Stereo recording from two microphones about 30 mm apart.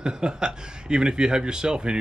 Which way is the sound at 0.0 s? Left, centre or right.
Right.